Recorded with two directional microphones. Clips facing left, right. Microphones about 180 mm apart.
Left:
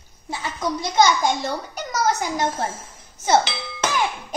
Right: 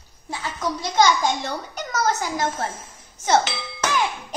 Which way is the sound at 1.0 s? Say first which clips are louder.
Even; 10° left (ahead or behind).